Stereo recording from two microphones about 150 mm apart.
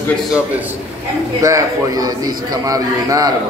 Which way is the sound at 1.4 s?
20° right (ahead or behind).